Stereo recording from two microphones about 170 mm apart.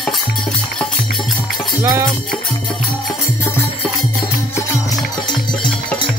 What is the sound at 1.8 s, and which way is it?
Music, 15° right (ahead or behind).